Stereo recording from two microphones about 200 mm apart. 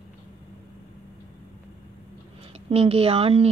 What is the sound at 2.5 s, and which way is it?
Speech, 30° right (ahead or behind).